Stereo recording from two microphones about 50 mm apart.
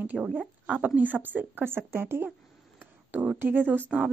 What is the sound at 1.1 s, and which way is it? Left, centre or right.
Speech, right.